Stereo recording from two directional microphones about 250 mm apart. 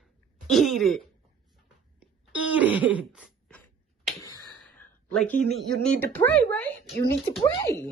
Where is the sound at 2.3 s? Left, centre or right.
Centre.